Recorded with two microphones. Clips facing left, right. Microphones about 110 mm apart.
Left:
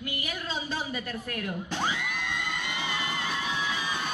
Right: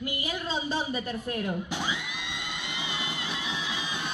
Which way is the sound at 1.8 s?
50° left (ahead or behind).